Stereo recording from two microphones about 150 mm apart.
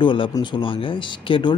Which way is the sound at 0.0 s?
35° left (ahead or behind).